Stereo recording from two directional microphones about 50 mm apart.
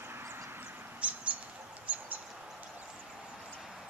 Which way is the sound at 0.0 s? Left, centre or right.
Right.